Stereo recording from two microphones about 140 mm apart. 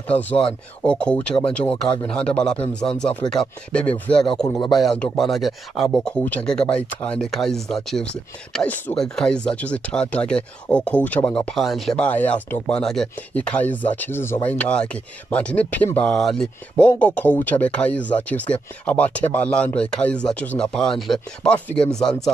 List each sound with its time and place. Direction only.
0.1 s speech: 10° left (ahead or behind)